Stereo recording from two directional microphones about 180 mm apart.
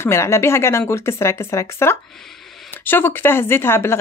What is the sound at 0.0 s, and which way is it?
Speech, 15° left (ahead or behind).